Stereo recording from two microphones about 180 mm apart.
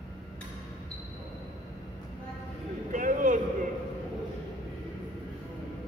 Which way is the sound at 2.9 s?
45° right (ahead or behind).